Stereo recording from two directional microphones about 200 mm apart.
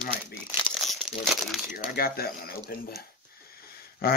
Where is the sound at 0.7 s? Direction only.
Centre (ahead or behind).